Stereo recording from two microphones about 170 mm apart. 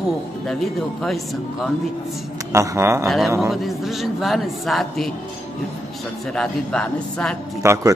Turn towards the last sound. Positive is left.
turn(degrees=-15)  # may be behind; listen again after turning